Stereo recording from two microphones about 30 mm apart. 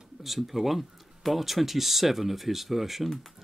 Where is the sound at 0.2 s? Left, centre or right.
Centre.